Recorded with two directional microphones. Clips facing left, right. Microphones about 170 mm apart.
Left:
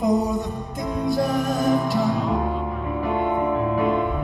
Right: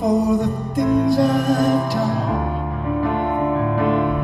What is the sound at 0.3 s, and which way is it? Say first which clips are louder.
Music: right 7 dB; centre (ahead or behind).